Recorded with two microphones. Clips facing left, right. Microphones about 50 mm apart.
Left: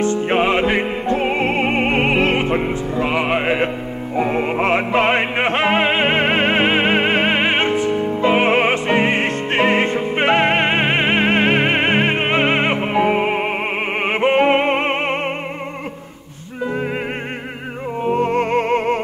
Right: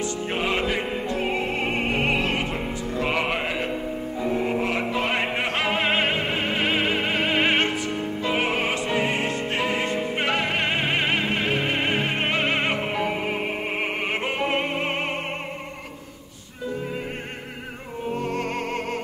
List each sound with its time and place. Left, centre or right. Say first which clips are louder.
0.0 s music: left 10 dB; left
3.0 s music: left 6 dB; centre
3.4 s music: left 9 dB; left
4.2 s music: left 7 dB; left
6.1 s music: left 9 dB; left
6.6 s music: left 7 dB; left
7.4 s music: left 5 dB; left
11.2 s music: left 8 dB; left
12.2 s music: left 7 dB; left
18.1 s music: left 10 dB; left